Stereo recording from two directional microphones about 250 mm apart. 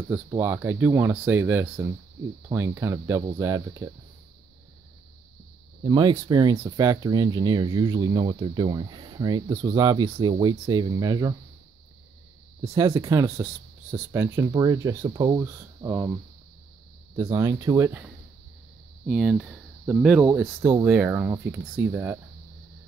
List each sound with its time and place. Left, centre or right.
0.3 s speech: centre
5.9 s speech: centre
12.6 s speech: centre
17.2 s speech: centre
19.0 s speech: centre